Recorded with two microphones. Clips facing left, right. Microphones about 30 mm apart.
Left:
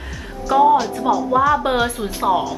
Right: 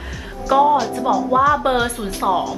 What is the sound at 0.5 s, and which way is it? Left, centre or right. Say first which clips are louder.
Speech: left 1 dB; centre.